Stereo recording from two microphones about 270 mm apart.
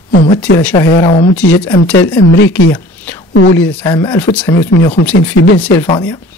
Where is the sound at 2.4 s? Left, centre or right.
Left.